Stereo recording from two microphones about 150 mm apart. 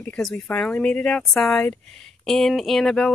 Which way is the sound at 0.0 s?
10° left (ahead or behind).